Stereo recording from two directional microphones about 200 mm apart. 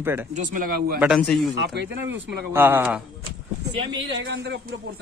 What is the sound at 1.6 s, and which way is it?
Speech, 55° right (ahead or behind).